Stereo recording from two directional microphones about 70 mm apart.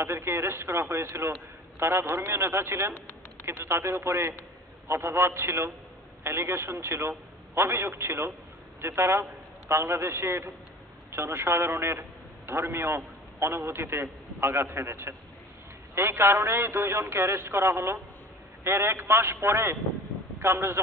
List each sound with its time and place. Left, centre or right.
0.0 s a man's voice: right